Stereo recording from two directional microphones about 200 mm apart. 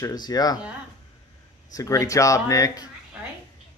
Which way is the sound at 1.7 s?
15° left (ahead or behind).